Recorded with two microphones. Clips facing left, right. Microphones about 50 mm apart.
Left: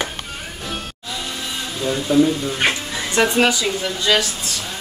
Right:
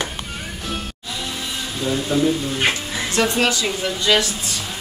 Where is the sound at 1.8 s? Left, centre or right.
Centre.